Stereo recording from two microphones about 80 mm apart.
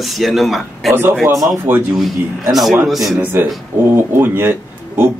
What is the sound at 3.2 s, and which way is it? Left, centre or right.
Speech, right.